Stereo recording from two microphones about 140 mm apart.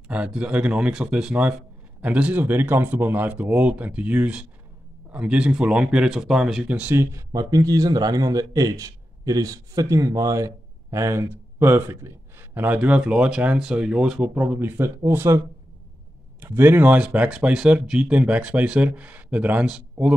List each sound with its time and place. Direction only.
0.1 s speech: 10° right (ahead or behind)